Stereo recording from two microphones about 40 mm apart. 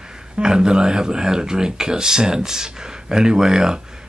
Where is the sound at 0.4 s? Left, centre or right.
Centre.